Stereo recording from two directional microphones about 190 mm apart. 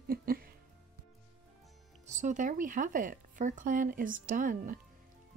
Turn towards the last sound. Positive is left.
turn(degrees=-45)  # may be behind; listen again after turning